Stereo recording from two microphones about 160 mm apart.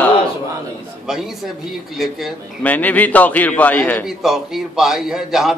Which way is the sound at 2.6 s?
10° left (ahead or behind).